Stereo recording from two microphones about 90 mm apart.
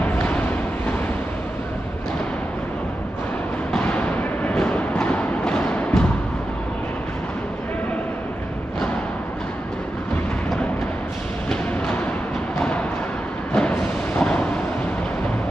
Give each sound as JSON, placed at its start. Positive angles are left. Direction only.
{"t": 0.0, "sound": "a sound", "side_deg": 15}
{"t": 3.7, "sound": "music", "side_deg": 15}
{"t": 12.5, "sound": "music", "side_deg": 10}